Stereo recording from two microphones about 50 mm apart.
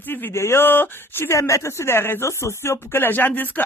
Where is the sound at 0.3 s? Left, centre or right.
Left.